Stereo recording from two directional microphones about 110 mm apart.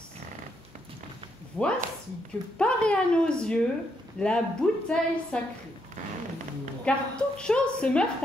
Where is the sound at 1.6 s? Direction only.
15° left (ahead or behind).